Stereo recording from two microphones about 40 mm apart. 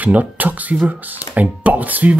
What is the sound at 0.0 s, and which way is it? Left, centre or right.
Speech, right.